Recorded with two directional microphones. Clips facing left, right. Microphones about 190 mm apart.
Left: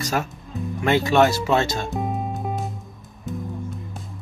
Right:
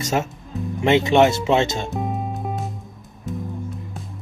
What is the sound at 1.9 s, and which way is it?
Music, centre (ahead or behind).